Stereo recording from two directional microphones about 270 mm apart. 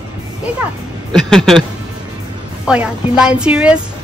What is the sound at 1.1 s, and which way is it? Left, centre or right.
Speech, centre.